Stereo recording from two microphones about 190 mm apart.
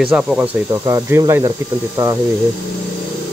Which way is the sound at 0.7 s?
15° right (ahead or behind).